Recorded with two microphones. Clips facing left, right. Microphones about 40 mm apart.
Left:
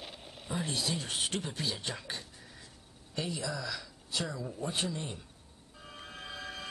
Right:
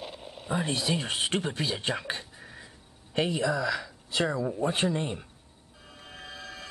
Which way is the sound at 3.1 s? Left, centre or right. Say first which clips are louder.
Right 9 dB; right.